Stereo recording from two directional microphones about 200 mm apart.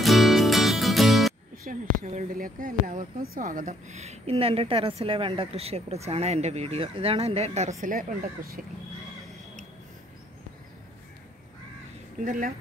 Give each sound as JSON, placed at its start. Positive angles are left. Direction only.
{"t": 0.0, "sound": "music", "side_deg": 0}
{"t": 1.6, "sound": "speech", "side_deg": -45}
{"t": 12.3, "sound": "speech", "side_deg": -40}